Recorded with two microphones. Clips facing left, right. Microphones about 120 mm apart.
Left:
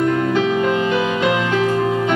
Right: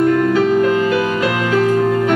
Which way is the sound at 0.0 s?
40° right (ahead or behind).